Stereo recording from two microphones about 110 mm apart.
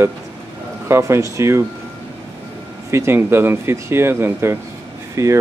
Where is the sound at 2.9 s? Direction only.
20° right (ahead or behind).